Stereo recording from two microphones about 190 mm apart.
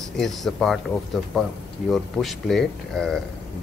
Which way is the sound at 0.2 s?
Centre (ahead or behind).